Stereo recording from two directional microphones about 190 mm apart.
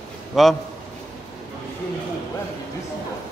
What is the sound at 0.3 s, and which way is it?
Speech, centre (ahead or behind).